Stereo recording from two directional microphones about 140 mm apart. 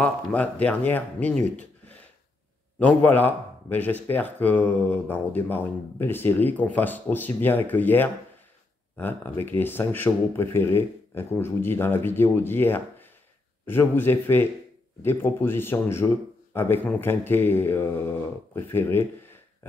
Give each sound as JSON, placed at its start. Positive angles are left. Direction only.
{"t": 0.0, "sound": "a man's voice", "side_deg": 10}